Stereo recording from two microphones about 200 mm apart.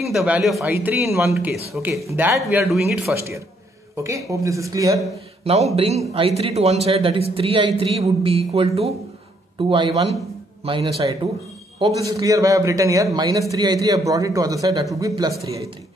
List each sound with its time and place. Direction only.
0.0 s speech: centre (ahead or behind)
0.7 s a man's voice: 10° right (ahead or behind)
1.3 s a man's voice: centre (ahead or behind)
2.5 s speech: centre (ahead or behind)
3.9 s a man's voice: 15° right (ahead or behind)
5.4 s speech: 30° right (ahead or behind)
11.8 s a man's voice: 15° right (ahead or behind)